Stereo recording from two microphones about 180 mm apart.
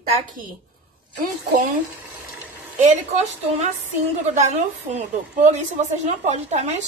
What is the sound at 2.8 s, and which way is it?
A woman's voice, 40° right (ahead or behind).